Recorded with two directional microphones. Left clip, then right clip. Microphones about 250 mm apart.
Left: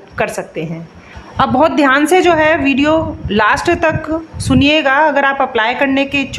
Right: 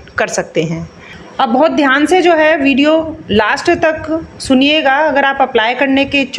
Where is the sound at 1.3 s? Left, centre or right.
Centre.